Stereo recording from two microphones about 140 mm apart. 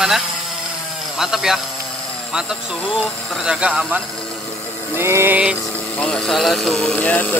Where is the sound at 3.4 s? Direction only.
5° right (ahead or behind).